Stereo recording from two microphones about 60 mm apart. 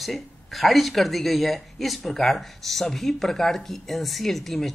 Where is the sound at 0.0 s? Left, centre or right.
Centre.